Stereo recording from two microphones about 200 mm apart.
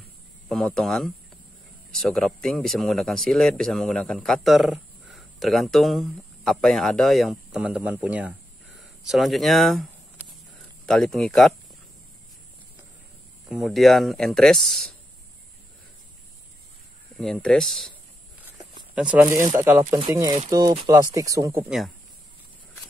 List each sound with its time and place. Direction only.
0.5 s speech: centre (ahead or behind)
13.5 s speech: centre (ahead or behind)
17.2 s speech: 5° left (ahead or behind)
18.4 s a sound: 5° right (ahead or behind)
19.6 s speech: 10° right (ahead or behind)
21.6 s speech: centre (ahead or behind)